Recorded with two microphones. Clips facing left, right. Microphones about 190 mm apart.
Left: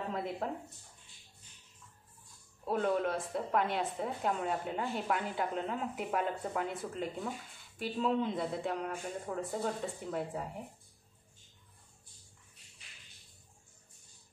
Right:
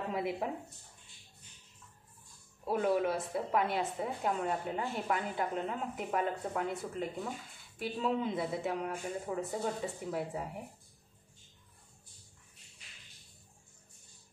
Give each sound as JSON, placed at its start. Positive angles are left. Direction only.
{"t": 0.1, "sound": "speech", "side_deg": -10}
{"t": 2.6, "sound": "a woman's voice", "side_deg": -5}